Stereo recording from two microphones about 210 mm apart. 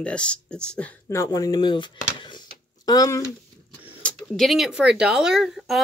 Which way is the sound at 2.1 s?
20° left (ahead or behind).